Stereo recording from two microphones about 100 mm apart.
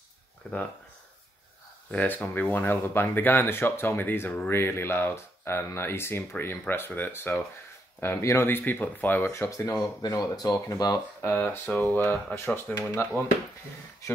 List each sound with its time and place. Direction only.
0.4 s speech: 10° left (ahead or behind)
1.9 s speech: 15° left (ahead or behind); by 11.0 s 40° left (ahead or behind)
11.1 s speech: 20° left (ahead or behind)